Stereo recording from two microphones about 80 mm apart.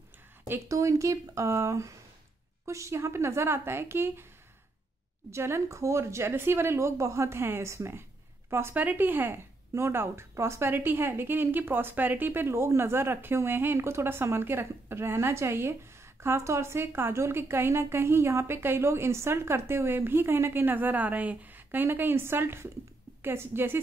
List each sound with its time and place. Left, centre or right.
0.7 s a woman's voice: right
5.3 s a woman's voice: right